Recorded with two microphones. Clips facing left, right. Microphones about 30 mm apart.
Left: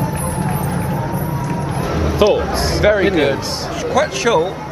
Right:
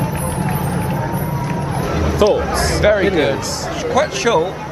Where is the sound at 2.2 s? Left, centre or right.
Left.